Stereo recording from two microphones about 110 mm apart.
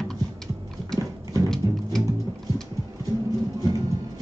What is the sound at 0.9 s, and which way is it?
Horse, 30° right (ahead or behind).